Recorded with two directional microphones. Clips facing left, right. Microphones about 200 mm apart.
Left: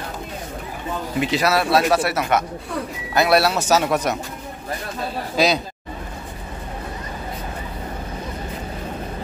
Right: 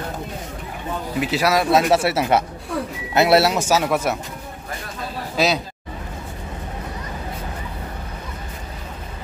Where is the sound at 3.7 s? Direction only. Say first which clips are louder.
Even; 5° right (ahead or behind).